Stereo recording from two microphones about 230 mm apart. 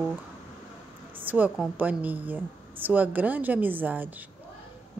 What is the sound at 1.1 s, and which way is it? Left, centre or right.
A woman's voice, centre.